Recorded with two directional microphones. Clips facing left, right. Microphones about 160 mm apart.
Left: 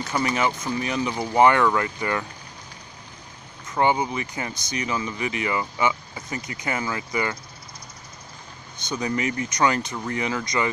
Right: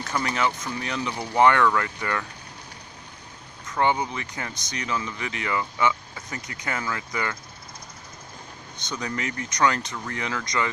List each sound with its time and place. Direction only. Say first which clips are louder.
0.1 s speech: left 2 dB; 10° left (ahead or behind)
3.7 s speech: left 2 dB; 10° left (ahead or behind)
8.7 s speech: left 5 dB; 10° left (ahead or behind)